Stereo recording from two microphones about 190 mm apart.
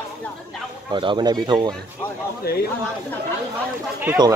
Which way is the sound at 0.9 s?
25° right (ahead or behind).